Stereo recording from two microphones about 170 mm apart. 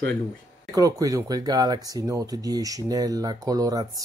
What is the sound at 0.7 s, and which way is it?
Speech, 20° right (ahead or behind).